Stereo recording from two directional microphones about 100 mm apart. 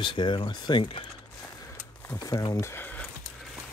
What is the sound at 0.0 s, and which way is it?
Speech, 55° left (ahead or behind).